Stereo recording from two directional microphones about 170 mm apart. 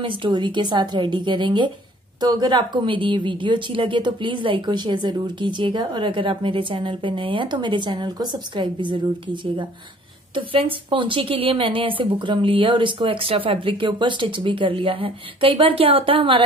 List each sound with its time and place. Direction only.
0.0 s a woman's voice: 30° right (ahead or behind)